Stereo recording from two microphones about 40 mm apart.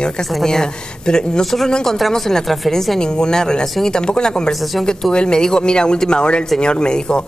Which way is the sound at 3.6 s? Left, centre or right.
Centre.